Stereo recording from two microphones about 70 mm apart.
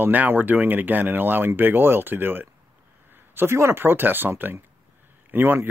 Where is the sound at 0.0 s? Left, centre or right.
Right.